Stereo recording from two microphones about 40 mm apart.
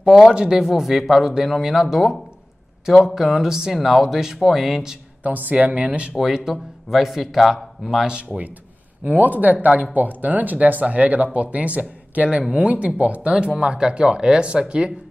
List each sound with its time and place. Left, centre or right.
0.0 s speech: centre
0.6 s speech: centre
3.1 s speech: centre
5.2 s speech: right
6.1 s speech: centre
8.1 s speech: right
9.0 s speech: right
12.8 s speech: right